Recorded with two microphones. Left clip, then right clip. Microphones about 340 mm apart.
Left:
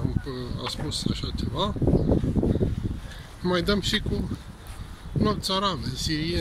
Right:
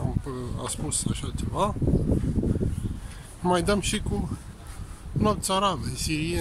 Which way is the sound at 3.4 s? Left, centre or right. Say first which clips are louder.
Right 1 dB; centre.